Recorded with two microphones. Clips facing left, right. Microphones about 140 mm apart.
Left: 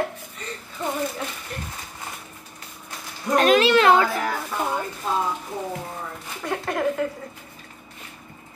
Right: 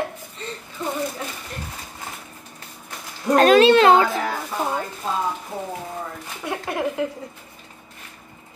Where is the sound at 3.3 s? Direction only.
40° right (ahead or behind).